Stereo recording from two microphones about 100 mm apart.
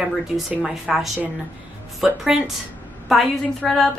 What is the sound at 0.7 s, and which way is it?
A woman's voice, 5° right (ahead or behind).